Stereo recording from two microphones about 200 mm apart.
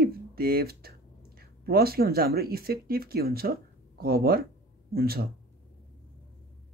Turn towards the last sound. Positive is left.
turn(degrees=-50)  # may be behind; listen again after turning